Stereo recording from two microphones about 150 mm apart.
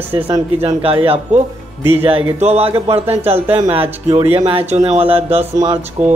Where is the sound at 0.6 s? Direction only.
40° right (ahead or behind).